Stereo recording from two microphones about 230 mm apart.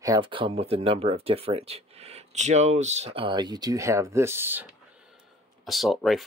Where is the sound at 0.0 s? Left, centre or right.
Centre.